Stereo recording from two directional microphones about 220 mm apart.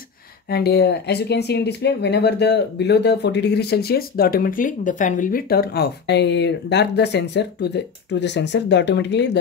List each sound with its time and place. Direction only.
0.5 s speech: 45° left (ahead or behind)